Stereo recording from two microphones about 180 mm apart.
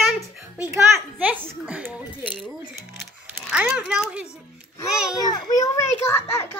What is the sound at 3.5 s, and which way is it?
Speech, 5° right (ahead or behind).